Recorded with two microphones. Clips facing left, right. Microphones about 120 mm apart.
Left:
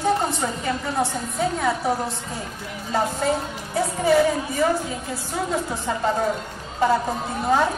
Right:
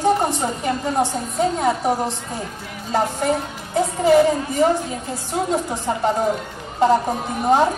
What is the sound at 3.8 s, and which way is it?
A woman's voice, 20° right (ahead or behind).